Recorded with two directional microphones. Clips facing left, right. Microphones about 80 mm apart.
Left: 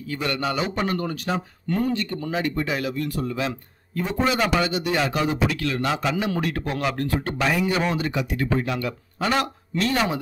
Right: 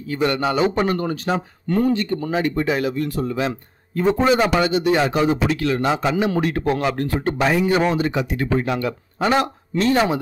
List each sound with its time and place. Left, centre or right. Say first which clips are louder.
0.1 s a man's voice: right 6 dB; right